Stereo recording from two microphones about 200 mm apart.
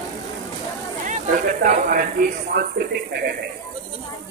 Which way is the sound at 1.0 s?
40° right (ahead or behind).